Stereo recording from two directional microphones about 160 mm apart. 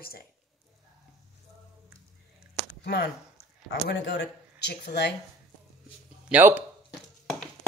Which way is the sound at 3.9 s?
90° left.